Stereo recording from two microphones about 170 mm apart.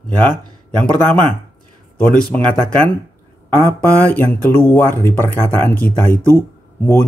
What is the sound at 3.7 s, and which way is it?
Speech, 10° left (ahead or behind).